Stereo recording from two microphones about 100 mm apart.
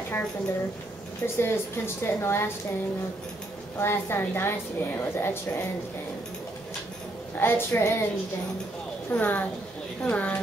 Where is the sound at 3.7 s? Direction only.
25° left (ahead or behind).